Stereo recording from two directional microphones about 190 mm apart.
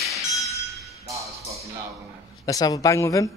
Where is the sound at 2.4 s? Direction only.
20° left (ahead or behind).